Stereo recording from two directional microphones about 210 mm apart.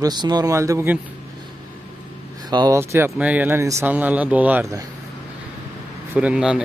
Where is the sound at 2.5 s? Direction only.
15° right (ahead or behind).